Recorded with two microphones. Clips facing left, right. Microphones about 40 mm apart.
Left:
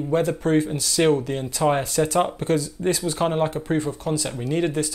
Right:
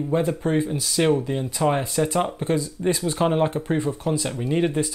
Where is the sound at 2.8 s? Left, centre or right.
Centre.